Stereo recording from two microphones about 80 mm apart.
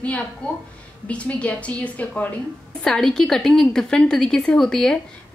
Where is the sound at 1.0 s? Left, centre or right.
Centre.